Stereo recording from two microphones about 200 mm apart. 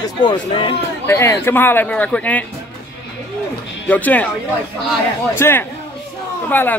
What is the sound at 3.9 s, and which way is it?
Speech, 10° left (ahead or behind).